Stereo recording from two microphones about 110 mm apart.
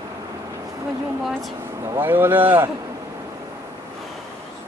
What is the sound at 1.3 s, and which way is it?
Speech, centre (ahead or behind).